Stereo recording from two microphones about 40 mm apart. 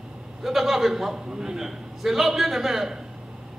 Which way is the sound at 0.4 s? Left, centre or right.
Centre.